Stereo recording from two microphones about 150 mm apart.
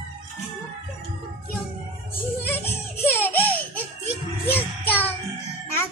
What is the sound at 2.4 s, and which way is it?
Music, 15° left (ahead or behind).